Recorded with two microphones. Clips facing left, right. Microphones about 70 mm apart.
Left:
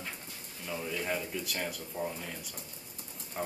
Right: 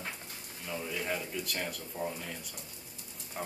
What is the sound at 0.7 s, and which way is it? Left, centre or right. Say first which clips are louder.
Speech: left 1 dB; centre.